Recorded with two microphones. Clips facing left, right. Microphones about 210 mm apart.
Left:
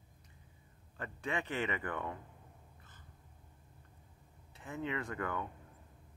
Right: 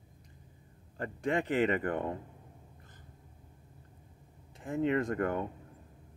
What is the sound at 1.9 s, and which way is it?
Speech, 40° right (ahead or behind).